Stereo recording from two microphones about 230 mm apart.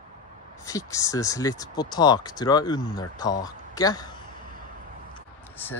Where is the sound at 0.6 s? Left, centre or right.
Centre.